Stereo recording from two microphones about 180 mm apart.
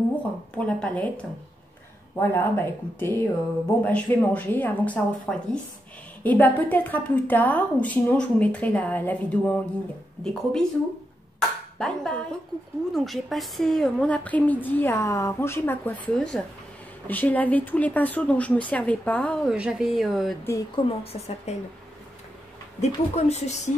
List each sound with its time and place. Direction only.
0.7 s a woman's voice: 5° left (ahead or behind)
19.5 s speech: 5° right (ahead or behind)
20.7 s a woman's voice: 35° left (ahead or behind)
22.8 s a woman's voice: 40° left (ahead or behind)